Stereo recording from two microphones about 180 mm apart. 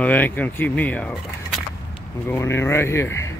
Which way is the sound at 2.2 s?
15° left (ahead or behind).